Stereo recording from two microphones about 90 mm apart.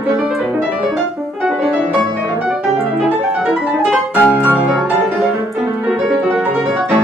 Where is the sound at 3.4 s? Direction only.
5° right (ahead or behind).